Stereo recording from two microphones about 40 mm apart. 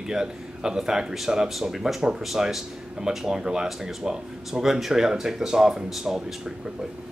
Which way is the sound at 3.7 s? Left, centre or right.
Centre.